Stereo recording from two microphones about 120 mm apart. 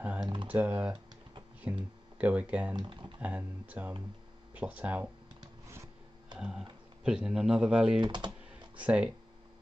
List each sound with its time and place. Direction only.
0.0 s typing: 10° right (ahead or behind)
0.5 s speech: 10° right (ahead or behind)
2.7 s speech: 40° right (ahead or behind)
3.2 s speech: 15° right (ahead or behind)
6.3 s speech: 5° right (ahead or behind)
8.0 s typing: 40° right (ahead or behind)
8.7 s speech: 10° right (ahead or behind)